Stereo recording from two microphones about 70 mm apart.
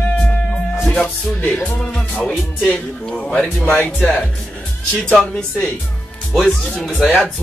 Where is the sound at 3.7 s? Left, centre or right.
Left.